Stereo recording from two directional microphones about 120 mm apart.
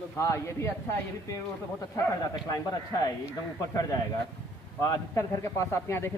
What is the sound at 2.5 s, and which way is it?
Speech, 30° left (ahead or behind).